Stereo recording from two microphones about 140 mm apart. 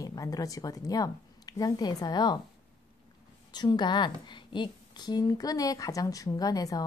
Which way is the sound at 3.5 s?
30° left (ahead or behind).